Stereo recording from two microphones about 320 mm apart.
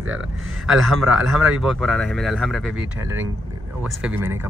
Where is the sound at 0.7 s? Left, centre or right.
Centre.